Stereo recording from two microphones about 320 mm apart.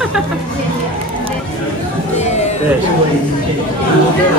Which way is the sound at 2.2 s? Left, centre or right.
Left.